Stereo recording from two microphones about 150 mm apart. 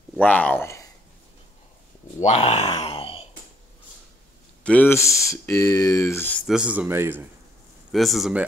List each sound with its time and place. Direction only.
0.2 s speech: 10° left (ahead or behind)
2.1 s speech: 45° left (ahead or behind)
4.6 s speech: 10° left (ahead or behind)
6.4 s speech: 5° right (ahead or behind)
7.9 s speech: centre (ahead or behind)